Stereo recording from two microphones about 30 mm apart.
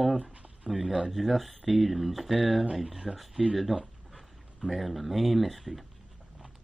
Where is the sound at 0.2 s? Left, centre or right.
Right.